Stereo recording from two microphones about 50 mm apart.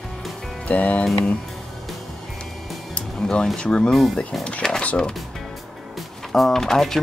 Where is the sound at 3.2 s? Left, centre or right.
Centre.